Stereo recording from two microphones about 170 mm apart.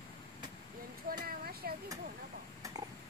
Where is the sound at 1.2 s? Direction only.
65° right (ahead or behind).